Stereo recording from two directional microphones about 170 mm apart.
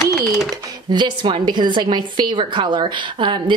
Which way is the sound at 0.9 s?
25° right (ahead or behind).